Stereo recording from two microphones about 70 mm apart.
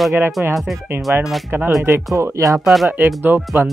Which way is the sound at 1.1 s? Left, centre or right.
Right.